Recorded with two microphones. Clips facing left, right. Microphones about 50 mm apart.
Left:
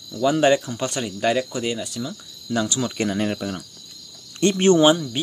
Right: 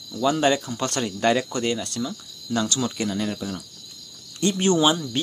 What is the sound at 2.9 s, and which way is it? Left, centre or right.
Speech, left.